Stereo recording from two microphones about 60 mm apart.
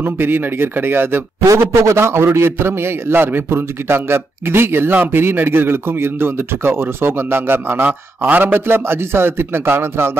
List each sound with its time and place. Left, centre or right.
0.0 s a man's voice: right
1.4 s a man's voice: right
1.7 s a man's voice: right